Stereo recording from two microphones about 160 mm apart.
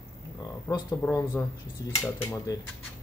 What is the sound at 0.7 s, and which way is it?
Speech, 15° left (ahead or behind).